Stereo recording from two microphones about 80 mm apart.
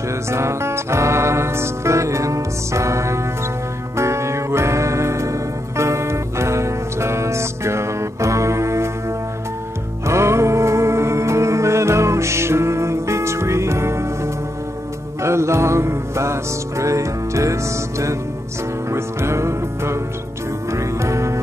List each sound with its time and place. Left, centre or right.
0.1 s music: right
10.0 s music: right